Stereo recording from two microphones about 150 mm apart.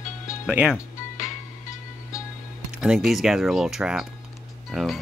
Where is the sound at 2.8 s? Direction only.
5° right (ahead or behind).